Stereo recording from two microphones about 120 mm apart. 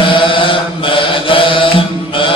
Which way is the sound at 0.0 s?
45° left (ahead or behind).